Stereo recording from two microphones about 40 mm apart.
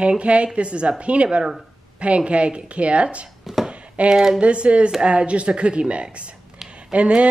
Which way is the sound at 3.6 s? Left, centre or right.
Right.